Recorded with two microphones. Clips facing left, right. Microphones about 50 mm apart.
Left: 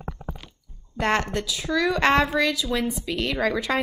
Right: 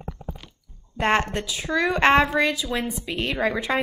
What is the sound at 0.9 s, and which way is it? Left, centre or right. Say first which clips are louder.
A woman's voice: right 2 dB; right.